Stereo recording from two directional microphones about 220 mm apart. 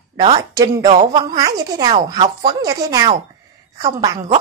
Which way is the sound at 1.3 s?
15° right (ahead or behind).